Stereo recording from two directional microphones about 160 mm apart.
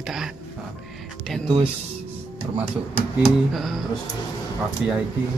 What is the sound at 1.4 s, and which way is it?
Speech, 35° right (ahead or behind).